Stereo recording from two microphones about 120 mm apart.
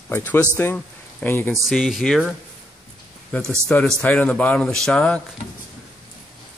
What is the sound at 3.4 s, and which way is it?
Speech, 20° right (ahead or behind).